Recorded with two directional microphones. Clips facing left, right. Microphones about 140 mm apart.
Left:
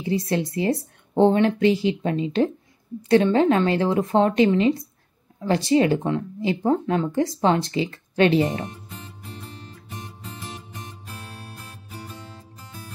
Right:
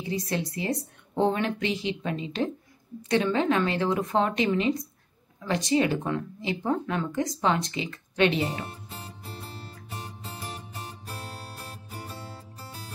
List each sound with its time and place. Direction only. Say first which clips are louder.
1.1 s speech: left 8 dB; 30° left (ahead or behind)
8.6 s music: left 3 dB; 35° right (ahead or behind)